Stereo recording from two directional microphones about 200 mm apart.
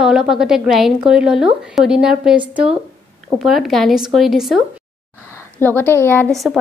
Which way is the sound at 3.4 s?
Centre (ahead or behind).